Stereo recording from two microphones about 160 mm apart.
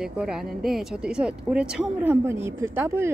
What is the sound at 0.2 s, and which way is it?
Speech, 5° right (ahead or behind).